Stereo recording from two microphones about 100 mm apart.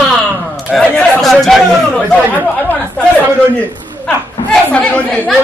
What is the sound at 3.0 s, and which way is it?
Speech, 15° left (ahead or behind).